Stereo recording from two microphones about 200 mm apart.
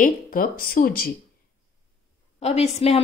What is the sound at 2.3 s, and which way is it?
Speech, 30° left (ahead or behind).